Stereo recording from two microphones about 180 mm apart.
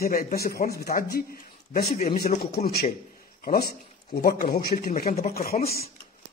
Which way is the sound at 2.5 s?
60° left (ahead or behind).